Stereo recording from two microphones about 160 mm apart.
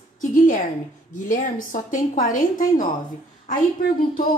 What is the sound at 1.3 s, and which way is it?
A woman's voice, 55° left (ahead or behind).